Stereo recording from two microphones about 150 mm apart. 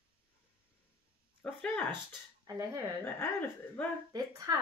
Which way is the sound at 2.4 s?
20° right (ahead or behind).